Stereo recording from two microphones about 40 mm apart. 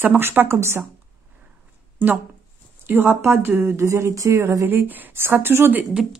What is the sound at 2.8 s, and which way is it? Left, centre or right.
Speech, right.